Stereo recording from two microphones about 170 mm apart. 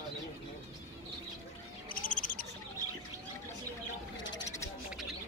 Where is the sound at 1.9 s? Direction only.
50° left (ahead or behind).